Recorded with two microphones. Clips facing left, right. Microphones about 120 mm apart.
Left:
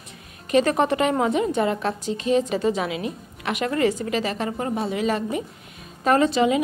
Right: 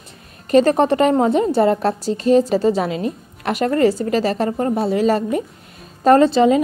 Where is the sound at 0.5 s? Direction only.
35° right (ahead or behind).